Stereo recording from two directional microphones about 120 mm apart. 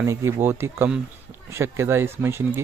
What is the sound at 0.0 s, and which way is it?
A man's voice, 20° right (ahead or behind).